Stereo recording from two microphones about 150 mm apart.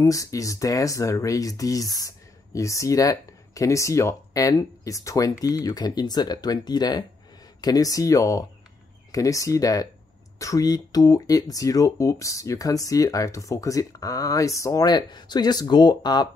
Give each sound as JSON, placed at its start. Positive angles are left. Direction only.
{"t": 0.0, "sound": "speech", "side_deg": 20}